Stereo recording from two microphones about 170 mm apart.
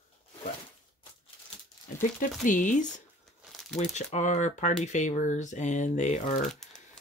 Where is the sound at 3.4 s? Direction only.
Centre (ahead or behind).